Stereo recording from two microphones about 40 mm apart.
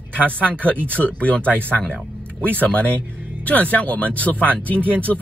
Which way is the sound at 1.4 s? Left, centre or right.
Right.